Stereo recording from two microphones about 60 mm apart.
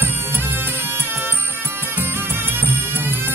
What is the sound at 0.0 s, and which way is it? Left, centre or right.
Music, right.